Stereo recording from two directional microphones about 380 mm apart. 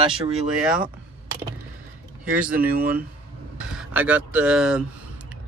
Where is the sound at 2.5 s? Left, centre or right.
Right.